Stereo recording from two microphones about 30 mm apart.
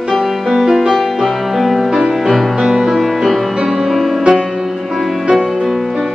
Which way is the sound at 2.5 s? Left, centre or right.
Centre.